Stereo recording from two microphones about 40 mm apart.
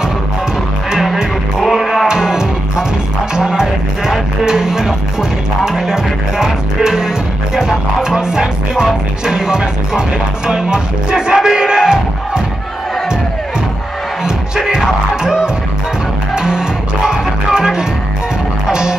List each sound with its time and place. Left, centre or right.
1.6 s music: centre
2.0 s music: centre
11.3 s crowd: centre
14.2 s music: centre